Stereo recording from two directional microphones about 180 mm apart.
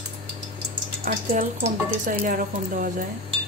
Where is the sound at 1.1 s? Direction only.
45° right (ahead or behind).